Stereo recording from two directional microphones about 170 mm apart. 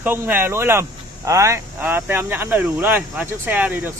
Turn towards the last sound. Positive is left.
turn(degrees=-10)  # may be behind; listen again after turning